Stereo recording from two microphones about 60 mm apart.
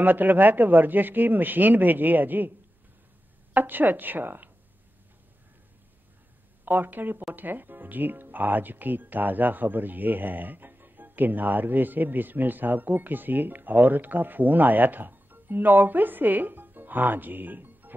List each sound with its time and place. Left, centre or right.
0.0 s speech: right
3.5 s speech: right
6.6 s speech: right